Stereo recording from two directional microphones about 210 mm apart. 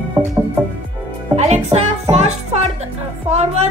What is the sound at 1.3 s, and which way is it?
Music, 30° right (ahead or behind).